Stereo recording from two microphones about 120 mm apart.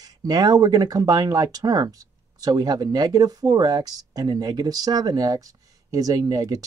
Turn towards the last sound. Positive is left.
turn(degrees=-30)  # may be behind; listen again after turning